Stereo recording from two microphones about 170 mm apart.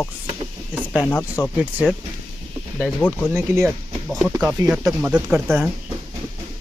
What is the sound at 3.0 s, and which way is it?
Speech, 10° left (ahead or behind).